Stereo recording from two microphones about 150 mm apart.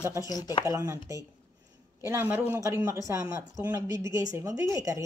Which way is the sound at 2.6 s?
20° right (ahead or behind).